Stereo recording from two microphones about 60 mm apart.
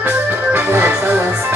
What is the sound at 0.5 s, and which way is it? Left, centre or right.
Music, right.